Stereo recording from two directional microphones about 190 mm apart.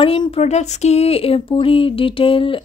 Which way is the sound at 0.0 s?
30° left (ahead or behind).